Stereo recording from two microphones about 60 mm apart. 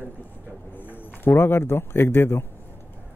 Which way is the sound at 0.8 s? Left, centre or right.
Left.